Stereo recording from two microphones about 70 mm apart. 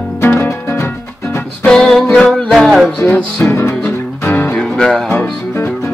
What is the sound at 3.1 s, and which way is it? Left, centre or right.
Music, centre.